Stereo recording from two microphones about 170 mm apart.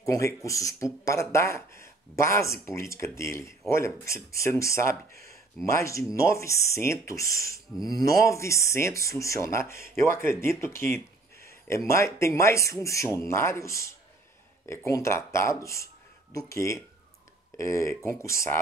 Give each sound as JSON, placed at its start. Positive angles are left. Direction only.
{"t": 0.0, "sound": "speech", "side_deg": 20}